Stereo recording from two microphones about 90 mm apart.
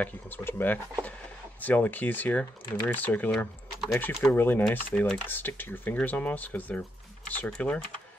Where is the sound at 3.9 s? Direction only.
30° left (ahead or behind).